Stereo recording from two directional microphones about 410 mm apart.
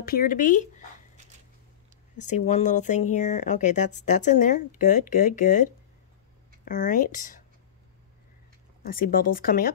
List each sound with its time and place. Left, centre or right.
0.0 s speech: left
2.1 s speech: centre
8.8 s speech: centre